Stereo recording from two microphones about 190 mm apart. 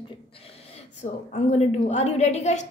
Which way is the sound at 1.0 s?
40° left (ahead or behind).